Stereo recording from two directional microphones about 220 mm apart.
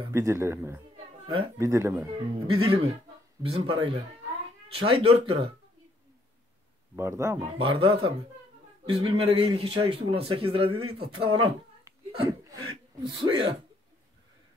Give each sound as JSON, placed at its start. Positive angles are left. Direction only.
{"t": 0.1, "sound": "a man's voice", "side_deg": -10}
{"t": 7.0, "sound": "speech", "side_deg": -10}
{"t": 7.5, "sound": "a man's voice", "side_deg": -25}
{"t": 10.7, "sound": "speech", "side_deg": -80}
{"t": 11.0, "sound": "a man's voice", "side_deg": -25}
{"t": 12.3, "sound": "a sound", "side_deg": -15}
{"t": 13.0, "sound": "a man's voice", "side_deg": -20}